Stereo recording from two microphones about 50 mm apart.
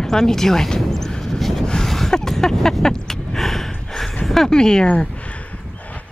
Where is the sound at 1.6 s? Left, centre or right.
Centre.